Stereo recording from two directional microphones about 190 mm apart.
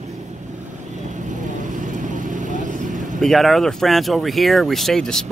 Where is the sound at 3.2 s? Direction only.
Centre (ahead or behind).